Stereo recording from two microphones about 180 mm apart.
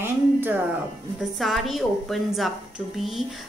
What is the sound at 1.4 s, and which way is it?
A woman's voice, centre (ahead or behind).